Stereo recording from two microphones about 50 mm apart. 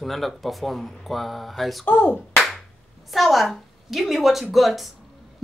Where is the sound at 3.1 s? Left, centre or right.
Centre.